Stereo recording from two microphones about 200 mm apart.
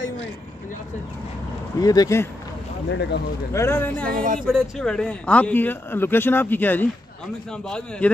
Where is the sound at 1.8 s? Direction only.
15° left (ahead or behind).